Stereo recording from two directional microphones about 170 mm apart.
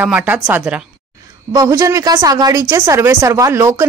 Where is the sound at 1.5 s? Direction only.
20° right (ahead or behind).